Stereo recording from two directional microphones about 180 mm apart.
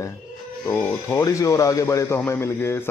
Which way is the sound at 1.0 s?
15° left (ahead or behind).